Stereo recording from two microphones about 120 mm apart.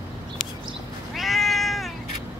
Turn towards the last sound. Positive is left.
turn(degrees=0)  # may be behind; listen again after turning